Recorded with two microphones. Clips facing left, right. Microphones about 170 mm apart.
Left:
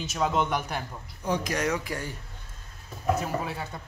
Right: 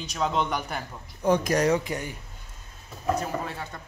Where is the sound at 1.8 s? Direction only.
20° right (ahead or behind).